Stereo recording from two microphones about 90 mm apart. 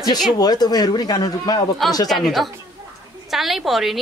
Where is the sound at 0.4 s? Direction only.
45° left (ahead or behind).